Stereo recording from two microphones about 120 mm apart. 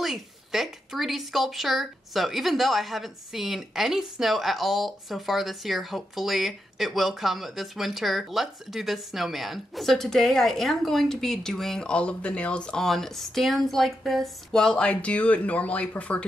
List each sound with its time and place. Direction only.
0.0 s speech: centre (ahead or behind)